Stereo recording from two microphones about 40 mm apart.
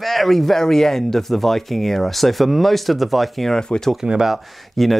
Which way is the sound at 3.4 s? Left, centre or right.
Centre.